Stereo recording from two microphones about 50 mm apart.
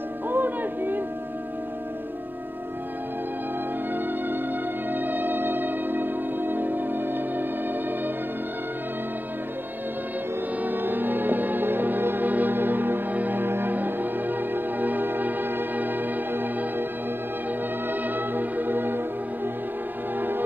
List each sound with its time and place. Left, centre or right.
0.3 s music: right
3.9 s music: right
10.6 s music: right
17.8 s music: right
20.2 s music: right